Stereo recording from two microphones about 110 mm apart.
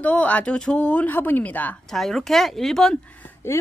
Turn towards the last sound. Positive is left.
turn(degrees=25)  # may be behind; listen again after turning